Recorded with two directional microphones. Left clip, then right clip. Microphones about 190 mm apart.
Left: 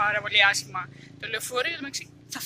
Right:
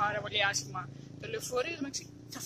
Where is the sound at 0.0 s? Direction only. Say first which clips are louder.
Left 9 dB; 5° right (ahead or behind).